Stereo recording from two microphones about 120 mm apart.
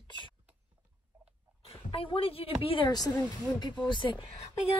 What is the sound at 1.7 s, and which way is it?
Speech, 50° left (ahead or behind).